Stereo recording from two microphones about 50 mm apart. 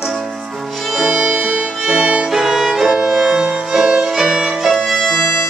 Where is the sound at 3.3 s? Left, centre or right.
Right.